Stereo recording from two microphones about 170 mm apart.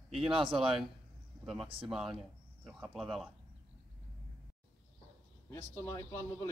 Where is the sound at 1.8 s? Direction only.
Centre (ahead or behind).